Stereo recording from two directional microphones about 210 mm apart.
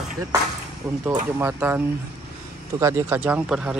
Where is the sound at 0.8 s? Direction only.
15° right (ahead or behind).